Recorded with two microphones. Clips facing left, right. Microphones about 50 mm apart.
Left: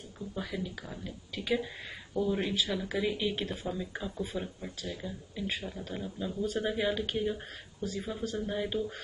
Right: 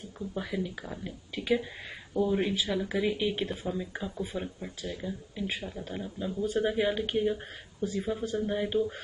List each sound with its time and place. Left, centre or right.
0.3 s speech: centre